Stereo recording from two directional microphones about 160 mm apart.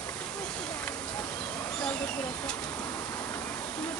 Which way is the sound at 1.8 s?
10° left (ahead or behind).